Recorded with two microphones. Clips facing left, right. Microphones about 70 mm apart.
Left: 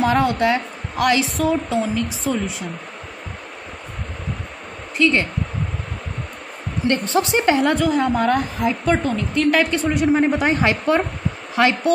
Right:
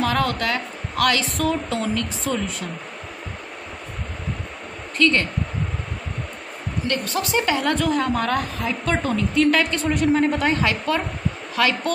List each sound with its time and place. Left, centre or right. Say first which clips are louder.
0.0 s a woman's voice: left 4 dB; centre
1.3 s speech: left 3 dB; centre
4.9 s speech: left 2 dB; centre
6.9 s a woman's voice: left 5 dB; left
7.6 s a woman's voice: left 3 dB; centre
8.9 s speech: left 1 dB; centre
10.1 s a woman's voice: left 2 dB; centre